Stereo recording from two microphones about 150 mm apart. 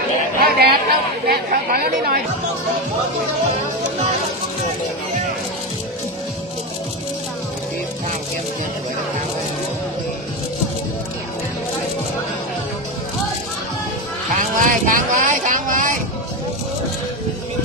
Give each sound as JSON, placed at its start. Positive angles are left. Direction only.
{"t": 0.4, "sound": "speech", "side_deg": -90}
{"t": 14.5, "sound": "vehicle", "side_deg": -60}